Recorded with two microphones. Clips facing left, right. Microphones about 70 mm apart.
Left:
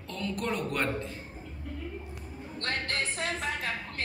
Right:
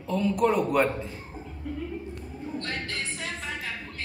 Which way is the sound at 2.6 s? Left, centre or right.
Left.